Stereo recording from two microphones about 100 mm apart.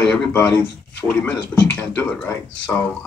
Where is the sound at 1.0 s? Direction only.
10° right (ahead or behind).